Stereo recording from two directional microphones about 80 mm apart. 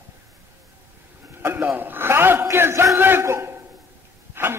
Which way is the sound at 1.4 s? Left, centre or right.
Right.